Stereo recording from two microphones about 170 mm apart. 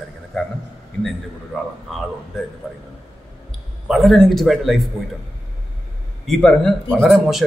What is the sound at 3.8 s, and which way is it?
A man's voice, centre (ahead or behind).